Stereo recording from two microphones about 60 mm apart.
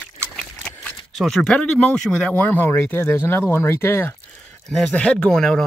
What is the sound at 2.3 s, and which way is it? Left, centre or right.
Speech, left.